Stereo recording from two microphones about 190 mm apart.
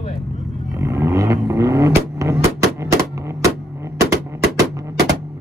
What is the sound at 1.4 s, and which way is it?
Vehicle, 15° right (ahead or behind).